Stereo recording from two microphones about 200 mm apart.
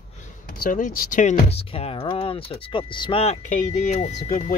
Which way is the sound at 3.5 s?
35° left (ahead or behind).